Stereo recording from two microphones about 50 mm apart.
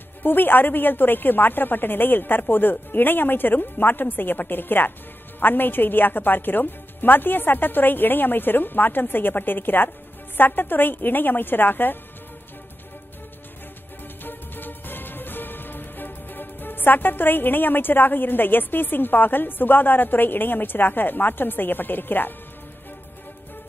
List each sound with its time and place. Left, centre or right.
0.2 s a woman's voice: left
14.2 s music: left